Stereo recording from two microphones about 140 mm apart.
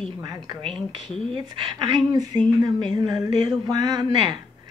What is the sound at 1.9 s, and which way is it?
Speech, 30° right (ahead or behind).